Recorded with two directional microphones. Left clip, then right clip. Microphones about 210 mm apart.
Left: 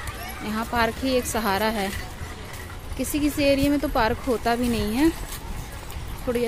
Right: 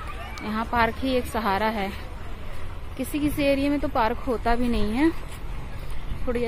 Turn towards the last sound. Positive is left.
turn(degrees=15)  # may be behind; listen again after turning